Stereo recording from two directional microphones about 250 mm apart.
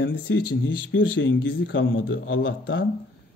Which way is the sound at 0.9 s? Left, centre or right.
Left.